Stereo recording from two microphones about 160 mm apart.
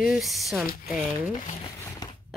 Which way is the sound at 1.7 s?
20° left (ahead or behind).